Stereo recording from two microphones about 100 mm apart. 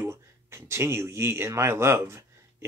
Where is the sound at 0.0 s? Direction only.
25° right (ahead or behind).